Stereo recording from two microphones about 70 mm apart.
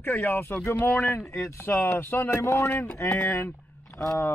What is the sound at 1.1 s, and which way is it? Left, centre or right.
Speech, left.